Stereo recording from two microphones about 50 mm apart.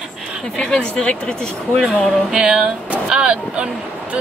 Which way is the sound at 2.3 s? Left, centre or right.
Centre.